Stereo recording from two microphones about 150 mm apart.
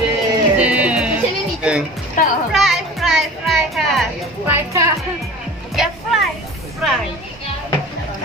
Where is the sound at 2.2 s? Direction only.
60° left (ahead or behind).